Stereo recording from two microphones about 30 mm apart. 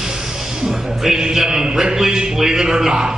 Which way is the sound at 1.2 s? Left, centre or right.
Right.